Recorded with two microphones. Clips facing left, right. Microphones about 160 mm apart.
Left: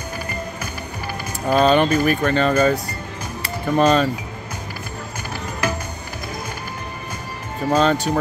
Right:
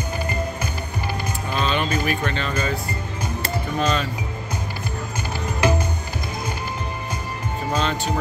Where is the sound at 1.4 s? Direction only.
45° left (ahead or behind).